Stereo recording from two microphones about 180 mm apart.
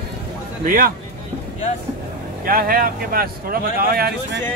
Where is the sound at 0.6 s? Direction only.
50° right (ahead or behind).